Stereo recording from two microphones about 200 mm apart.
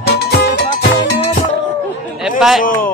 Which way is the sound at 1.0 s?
30° left (ahead or behind).